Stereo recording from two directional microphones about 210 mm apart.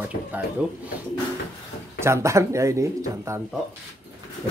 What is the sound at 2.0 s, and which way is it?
Speech, 15° right (ahead or behind).